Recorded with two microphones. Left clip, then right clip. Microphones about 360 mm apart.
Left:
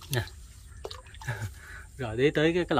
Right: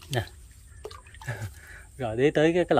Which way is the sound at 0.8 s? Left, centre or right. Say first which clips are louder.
Even; centre.